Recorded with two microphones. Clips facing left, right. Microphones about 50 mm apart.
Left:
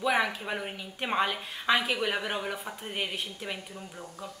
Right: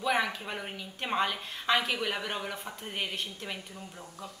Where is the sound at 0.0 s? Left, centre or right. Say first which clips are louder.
Left 2 dB; centre.